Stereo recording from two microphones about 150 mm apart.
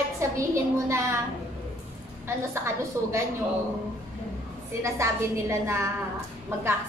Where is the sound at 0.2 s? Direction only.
20° right (ahead or behind).